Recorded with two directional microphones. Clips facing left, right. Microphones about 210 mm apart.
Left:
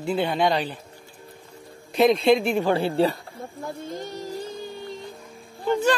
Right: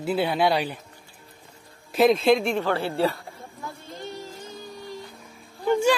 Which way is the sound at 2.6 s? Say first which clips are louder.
Left 3 dB; 15° left (ahead or behind).